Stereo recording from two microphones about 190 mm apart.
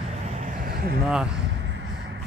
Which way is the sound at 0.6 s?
50° right (ahead or behind).